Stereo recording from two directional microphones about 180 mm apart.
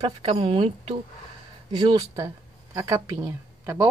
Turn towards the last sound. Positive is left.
turn(degrees=-15)  # may be behind; listen again after turning